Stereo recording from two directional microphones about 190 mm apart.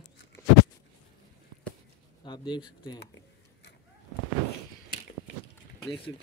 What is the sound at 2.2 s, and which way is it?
Speech, 25° left (ahead or behind).